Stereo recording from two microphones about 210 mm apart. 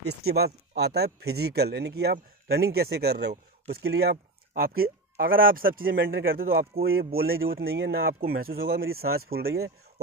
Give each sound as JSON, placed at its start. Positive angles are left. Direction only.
{"t": 0.3, "sound": "speech", "side_deg": -50}